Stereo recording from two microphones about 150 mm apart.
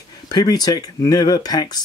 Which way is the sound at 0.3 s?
25° left (ahead or behind).